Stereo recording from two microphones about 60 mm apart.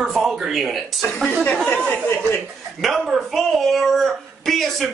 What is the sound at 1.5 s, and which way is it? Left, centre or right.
Speech, centre.